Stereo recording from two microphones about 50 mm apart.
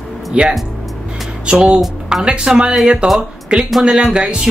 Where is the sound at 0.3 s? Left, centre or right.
Centre.